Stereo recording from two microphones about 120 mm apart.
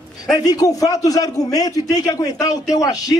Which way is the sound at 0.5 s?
30° left (ahead or behind).